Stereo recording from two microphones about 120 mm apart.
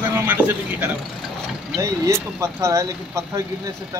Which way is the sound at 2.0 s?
25° right (ahead or behind).